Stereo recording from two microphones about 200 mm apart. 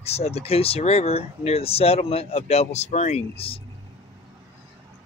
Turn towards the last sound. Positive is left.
turn(degrees=30)  # may be behind; listen again after turning